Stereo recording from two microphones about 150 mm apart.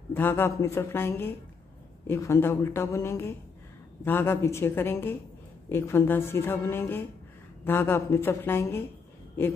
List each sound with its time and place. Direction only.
0.1 s a woman's voice: 15° left (ahead or behind)